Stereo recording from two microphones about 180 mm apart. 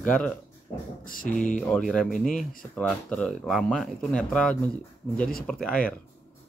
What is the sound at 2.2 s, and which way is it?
Speech, 50° left (ahead or behind).